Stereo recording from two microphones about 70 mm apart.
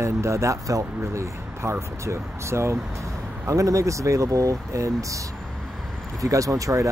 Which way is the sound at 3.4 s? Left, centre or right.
Right.